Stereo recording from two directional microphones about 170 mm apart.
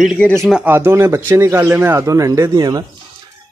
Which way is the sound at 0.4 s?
Centre (ahead or behind).